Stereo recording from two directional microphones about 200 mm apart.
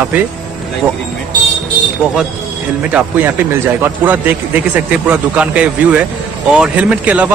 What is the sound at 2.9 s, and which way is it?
A man's voice, 10° right (ahead or behind).